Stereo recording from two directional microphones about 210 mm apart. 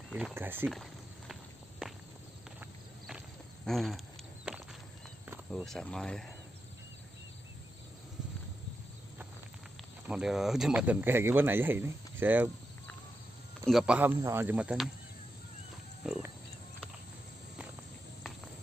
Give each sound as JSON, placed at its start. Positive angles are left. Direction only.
{"t": 0.3, "sound": "speech", "side_deg": -10}
{"t": 0.7, "sound": "walk", "side_deg": 0}
{"t": 3.6, "sound": "speech", "side_deg": 0}
{"t": 5.5, "sound": "speech", "side_deg": 0}
{"t": 10.0, "sound": "speech", "side_deg": -5}
{"t": 13.7, "sound": "speech", "side_deg": -5}